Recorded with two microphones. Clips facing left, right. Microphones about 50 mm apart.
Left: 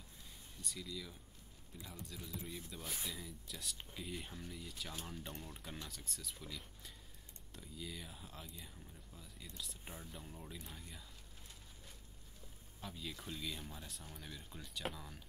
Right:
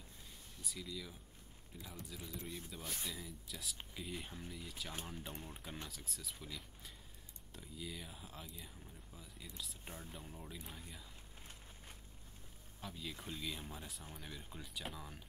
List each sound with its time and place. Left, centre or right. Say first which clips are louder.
0.6 s speech: even; centre
5.0 s speech: even; centre
5.9 s speech: even; centre
12.8 s speech: even; centre
13.1 s speech: right 1 dB; centre